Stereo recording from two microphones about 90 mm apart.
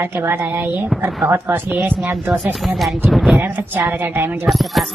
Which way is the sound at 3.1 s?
Centre (ahead or behind).